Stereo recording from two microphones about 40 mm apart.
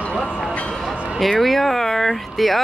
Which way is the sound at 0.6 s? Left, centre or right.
Centre.